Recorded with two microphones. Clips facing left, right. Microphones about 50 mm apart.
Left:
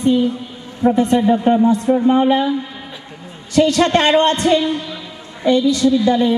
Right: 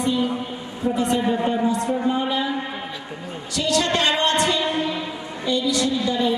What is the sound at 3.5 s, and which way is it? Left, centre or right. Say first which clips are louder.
Speech: left 8 dB; left.